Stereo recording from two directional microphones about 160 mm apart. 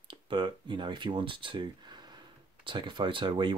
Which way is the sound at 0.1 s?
30° right (ahead or behind).